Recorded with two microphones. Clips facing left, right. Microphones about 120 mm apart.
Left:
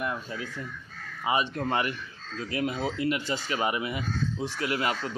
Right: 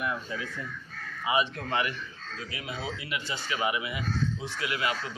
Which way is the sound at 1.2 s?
40° left (ahead or behind).